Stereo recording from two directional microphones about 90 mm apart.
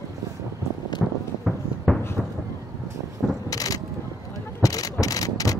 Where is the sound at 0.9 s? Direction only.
55° left (ahead or behind).